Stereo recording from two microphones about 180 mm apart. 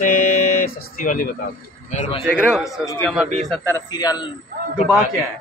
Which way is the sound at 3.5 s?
10° left (ahead or behind).